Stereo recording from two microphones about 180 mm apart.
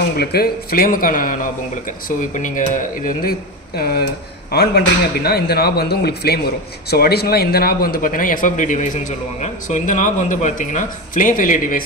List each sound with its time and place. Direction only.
0.2 s a man's voice: 60° left (ahead or behind)